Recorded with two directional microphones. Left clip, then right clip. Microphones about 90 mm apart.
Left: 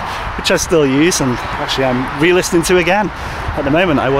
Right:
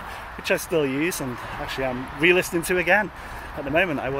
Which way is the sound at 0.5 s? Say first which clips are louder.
Left 10 dB; 30° left (ahead or behind).